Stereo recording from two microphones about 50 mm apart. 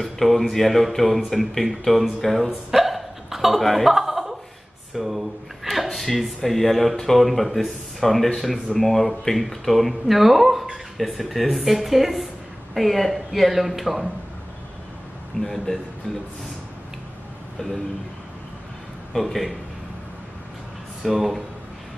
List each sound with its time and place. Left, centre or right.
0.0 s speech: centre
15.4 s speech: centre
17.6 s speech: centre
19.1 s speech: centre
21.0 s speech: centre